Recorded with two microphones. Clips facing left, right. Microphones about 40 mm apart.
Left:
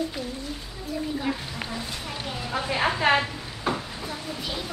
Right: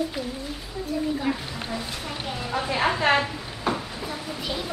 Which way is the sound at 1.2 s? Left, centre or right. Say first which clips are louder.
Right 2 dB; centre.